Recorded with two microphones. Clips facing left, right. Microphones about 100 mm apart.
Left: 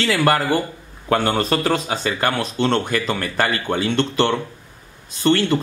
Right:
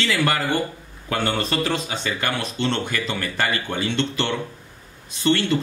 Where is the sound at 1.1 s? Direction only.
45° left (ahead or behind).